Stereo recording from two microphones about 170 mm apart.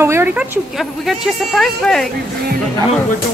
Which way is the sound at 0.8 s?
Centre (ahead or behind).